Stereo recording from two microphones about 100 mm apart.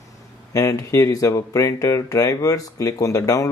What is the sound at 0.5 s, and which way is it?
Speech, 35° left (ahead or behind).